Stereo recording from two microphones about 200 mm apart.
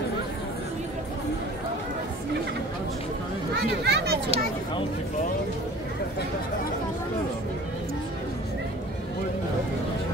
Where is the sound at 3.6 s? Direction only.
55° right (ahead or behind).